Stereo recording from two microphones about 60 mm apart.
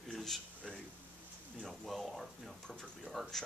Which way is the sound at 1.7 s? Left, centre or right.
Centre.